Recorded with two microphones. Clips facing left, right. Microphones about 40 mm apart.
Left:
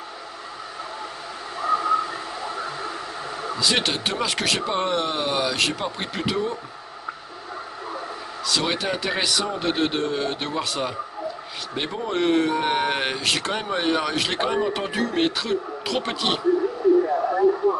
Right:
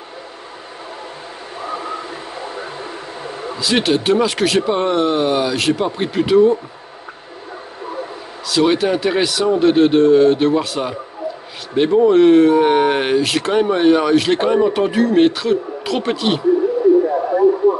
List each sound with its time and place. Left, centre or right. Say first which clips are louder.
1.6 s a sound: left 5 dB; right
3.5 s speech: right 7 dB; centre
8.5 s speech: right 9 dB; centre
17.0 s radio: right 5 dB; centre